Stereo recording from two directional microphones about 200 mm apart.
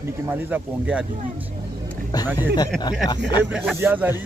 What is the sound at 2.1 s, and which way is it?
Speech, 20° left (ahead or behind).